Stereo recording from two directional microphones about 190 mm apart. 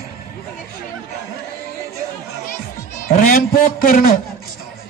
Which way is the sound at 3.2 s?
45° left (ahead or behind).